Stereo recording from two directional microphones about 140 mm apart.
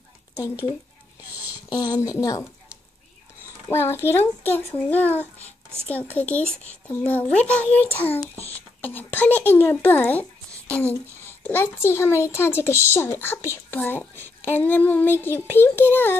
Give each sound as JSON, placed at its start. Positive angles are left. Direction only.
{"t": 1.2, "sound": "a sound", "side_deg": -10}
{"t": 1.7, "sound": "a woman's voice", "side_deg": 25}
{"t": 3.7, "sound": "a child's voice", "side_deg": 15}